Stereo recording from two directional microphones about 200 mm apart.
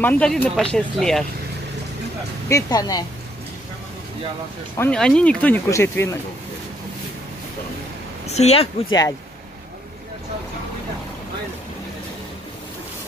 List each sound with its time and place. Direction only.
0.0 s speech: 5° left (ahead or behind)
2.5 s speech: 20° left (ahead or behind)
4.7 s speech: 5° left (ahead or behind)
8.3 s speech: 35° left (ahead or behind)